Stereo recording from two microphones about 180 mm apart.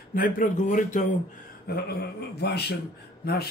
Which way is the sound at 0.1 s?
50° left (ahead or behind).